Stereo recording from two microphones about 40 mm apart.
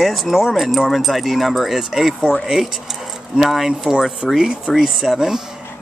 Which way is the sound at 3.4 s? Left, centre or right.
Centre.